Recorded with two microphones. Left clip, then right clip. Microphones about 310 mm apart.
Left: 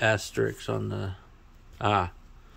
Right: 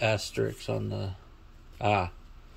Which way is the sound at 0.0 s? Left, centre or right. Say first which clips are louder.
Left 3 dB; centre.